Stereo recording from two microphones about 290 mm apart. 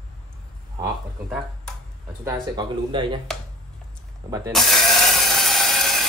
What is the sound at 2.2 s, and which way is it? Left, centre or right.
Speech, centre.